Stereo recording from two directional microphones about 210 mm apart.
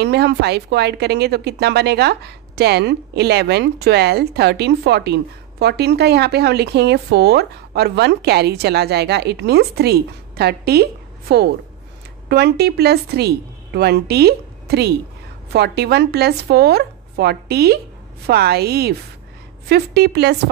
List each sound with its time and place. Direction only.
0.0 s speech: 50° right (ahead or behind)